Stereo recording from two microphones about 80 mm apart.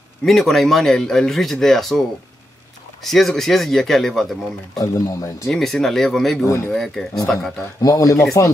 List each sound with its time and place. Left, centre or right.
0.2 s speech: centre
4.7 s speech: left
5.5 s speech: centre
6.4 s speech: left
6.7 s speech: centre
7.8 s speech: left